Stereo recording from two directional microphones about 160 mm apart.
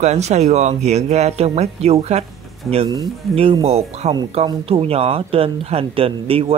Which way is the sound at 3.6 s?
40° right (ahead or behind).